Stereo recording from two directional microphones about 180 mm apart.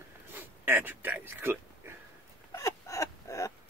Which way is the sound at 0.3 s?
10° right (ahead or behind).